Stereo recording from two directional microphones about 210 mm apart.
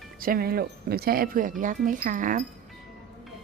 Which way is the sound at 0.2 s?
45° right (ahead or behind).